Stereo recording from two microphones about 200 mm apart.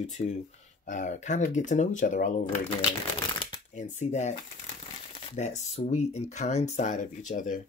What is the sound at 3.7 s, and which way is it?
Speech, 35° left (ahead or behind).